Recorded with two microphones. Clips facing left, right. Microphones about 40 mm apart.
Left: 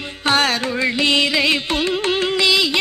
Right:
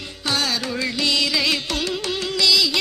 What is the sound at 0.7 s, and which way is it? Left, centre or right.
Music, left.